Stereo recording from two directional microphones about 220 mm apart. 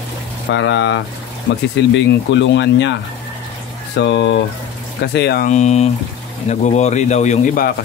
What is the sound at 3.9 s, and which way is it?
Speech, 55° left (ahead or behind).